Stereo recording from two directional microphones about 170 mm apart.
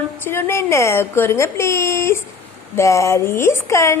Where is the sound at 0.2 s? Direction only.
15° left (ahead or behind).